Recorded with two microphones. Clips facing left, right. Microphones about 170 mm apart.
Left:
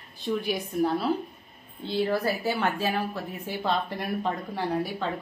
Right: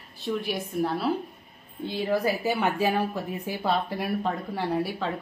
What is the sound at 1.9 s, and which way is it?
A woman's voice, 15° right (ahead or behind).